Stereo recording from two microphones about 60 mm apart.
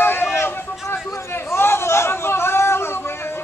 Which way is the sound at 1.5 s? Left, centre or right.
Left.